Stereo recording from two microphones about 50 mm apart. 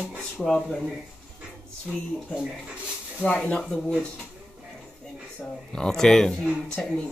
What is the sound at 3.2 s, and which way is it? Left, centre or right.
Speech, left.